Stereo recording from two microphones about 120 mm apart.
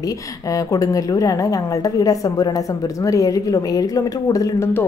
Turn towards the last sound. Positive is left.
turn(degrees=30)  # may be behind; listen again after turning